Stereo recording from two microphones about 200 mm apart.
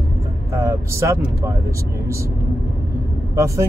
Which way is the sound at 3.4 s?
15° right (ahead or behind).